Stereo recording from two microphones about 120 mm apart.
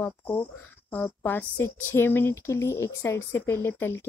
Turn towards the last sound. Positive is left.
turn(degrees=20)  # may be behind; listen again after turning